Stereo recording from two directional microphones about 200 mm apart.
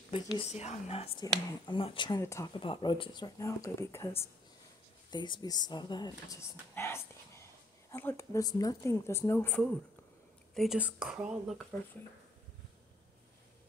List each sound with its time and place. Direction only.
0.1 s speech: 30° left (ahead or behind); by 4.1 s 15° left (ahead or behind)
5.1 s speech: 20° left (ahead or behind)
6.7 s whispering: 15° left (ahead or behind)
7.9 s speech: 10° left (ahead or behind)